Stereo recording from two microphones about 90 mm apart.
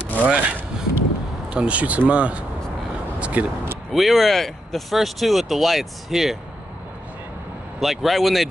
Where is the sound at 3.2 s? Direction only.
15° right (ahead or behind).